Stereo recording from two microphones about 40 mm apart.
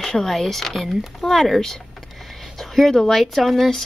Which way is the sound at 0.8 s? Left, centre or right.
Centre.